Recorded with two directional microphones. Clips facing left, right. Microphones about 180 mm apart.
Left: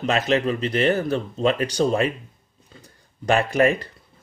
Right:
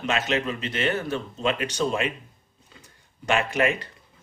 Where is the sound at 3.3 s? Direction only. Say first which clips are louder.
Left 5 dB; 35° left (ahead or behind).